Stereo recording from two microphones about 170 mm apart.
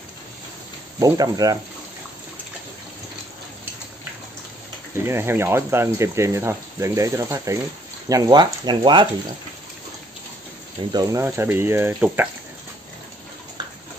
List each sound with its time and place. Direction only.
0.9 s speech: 20° right (ahead or behind)
4.9 s speech: 15° right (ahead or behind)
10.9 s speech: 20° right (ahead or behind)